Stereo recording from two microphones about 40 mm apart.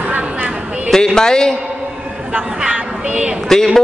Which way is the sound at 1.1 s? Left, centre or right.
Centre.